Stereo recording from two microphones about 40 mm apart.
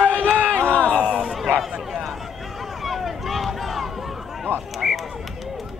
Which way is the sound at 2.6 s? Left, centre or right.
Centre.